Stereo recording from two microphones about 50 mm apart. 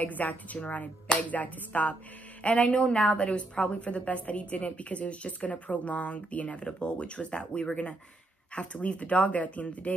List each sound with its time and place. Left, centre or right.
0.0 s a woman's voice: left